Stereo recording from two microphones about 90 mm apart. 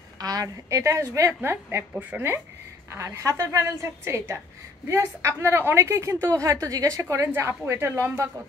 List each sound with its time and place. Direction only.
0.2 s a woman's voice: 45° right (ahead or behind)